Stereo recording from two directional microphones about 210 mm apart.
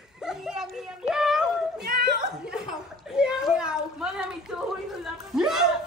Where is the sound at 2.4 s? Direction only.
5° right (ahead or behind).